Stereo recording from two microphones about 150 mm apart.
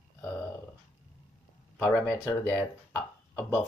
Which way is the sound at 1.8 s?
15° left (ahead or behind).